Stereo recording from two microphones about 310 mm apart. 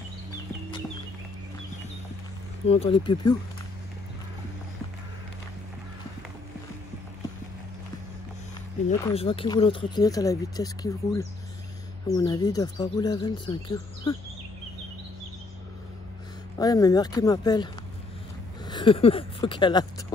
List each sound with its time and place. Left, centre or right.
2.6 s speech: centre
9.0 s speech: centre
16.5 s speech: centre
18.7 s speech: centre